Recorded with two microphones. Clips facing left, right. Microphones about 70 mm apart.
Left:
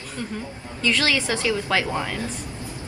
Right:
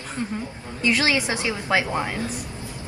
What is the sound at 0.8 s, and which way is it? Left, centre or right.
A woman's voice, right.